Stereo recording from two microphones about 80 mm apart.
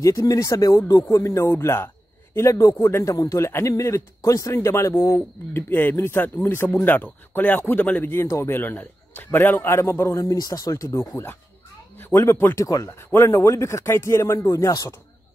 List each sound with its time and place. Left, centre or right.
0.3 s a man's voice: left
10.3 s a man's voice: left
12.6 s speech: left
12.9 s a man's voice: left